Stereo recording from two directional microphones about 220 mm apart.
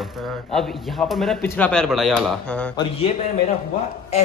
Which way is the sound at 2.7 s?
20° left (ahead or behind).